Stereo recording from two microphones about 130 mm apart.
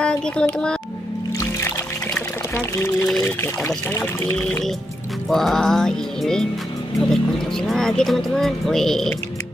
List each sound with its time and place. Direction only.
0.0 s a child's voice: 5° left (ahead or behind)
2.1 s pour: 20° left (ahead or behind)
3.3 s speech: 20° left (ahead or behind)
5.3 s speech: centre (ahead or behind)